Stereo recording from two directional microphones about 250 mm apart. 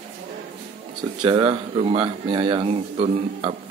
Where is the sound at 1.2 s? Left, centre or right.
Centre.